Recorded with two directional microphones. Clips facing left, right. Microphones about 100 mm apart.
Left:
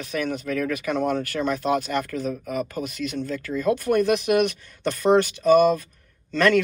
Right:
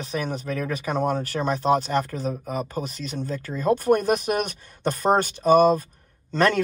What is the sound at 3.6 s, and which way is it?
Speech, 45° right (ahead or behind).